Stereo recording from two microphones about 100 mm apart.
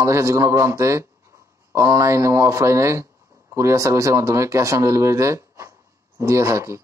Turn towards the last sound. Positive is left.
turn(degrees=-30)  # may be behind; listen again after turning